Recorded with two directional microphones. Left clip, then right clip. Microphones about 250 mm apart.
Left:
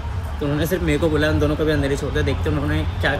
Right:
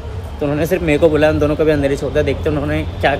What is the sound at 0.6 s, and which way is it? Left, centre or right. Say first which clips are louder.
Speech: right 7 dB; centre.